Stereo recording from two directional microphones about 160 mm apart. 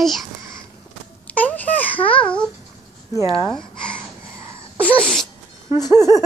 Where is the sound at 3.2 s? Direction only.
35° left (ahead or behind).